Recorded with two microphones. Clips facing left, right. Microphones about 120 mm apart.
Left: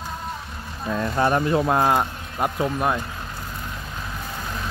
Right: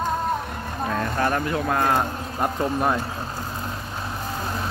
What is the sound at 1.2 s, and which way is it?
Speech, 20° left (ahead or behind).